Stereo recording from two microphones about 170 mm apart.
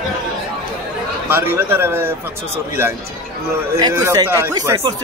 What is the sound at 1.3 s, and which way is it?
Speech, 15° right (ahead or behind).